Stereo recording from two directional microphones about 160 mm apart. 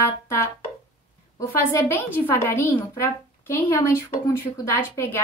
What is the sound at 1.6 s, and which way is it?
A woman's voice, 10° left (ahead or behind).